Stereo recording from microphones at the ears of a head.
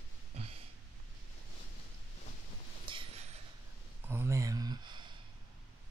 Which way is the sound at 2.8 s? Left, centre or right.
Right.